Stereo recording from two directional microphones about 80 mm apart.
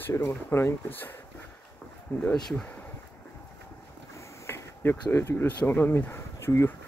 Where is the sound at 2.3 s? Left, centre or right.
Centre.